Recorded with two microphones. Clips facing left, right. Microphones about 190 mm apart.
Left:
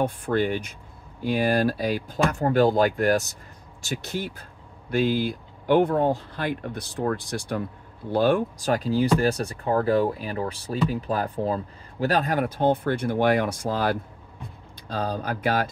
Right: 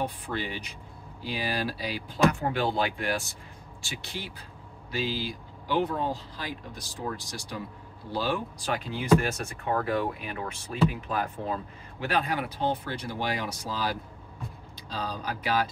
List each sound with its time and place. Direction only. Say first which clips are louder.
0.0 s speech: left 9 dB; 50° left (ahead or behind)